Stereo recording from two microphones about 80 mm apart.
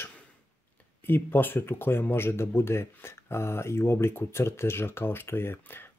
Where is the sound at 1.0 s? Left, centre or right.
Left.